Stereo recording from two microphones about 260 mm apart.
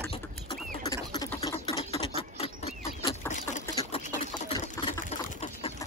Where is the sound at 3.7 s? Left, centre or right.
Left.